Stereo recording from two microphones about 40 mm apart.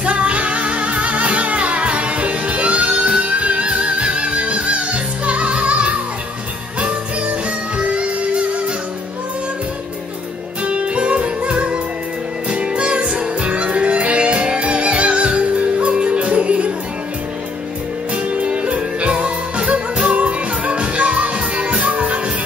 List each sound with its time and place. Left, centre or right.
0.0 s music: right
10.6 s music: right
18.1 s music: right